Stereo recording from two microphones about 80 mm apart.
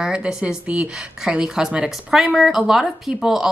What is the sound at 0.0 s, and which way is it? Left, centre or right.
A woman's voice, centre.